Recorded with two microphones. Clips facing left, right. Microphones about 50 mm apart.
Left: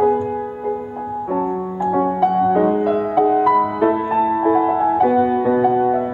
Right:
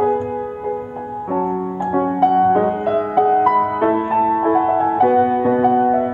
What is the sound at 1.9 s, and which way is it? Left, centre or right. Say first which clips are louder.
Music: right 1 dB; centre.